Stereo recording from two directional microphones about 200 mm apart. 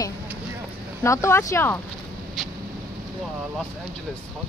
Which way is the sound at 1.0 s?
15° left (ahead or behind).